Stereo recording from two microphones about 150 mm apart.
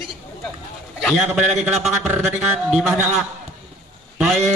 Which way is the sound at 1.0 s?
5° right (ahead or behind).